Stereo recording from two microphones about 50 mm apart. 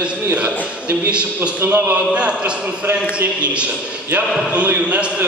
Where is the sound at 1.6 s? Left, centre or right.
Right.